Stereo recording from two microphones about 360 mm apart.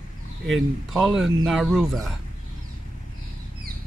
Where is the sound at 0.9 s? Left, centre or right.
Centre.